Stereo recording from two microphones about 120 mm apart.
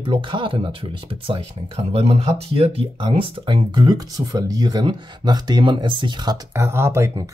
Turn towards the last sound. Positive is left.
turn(degrees=-20)  # may be behind; listen again after turning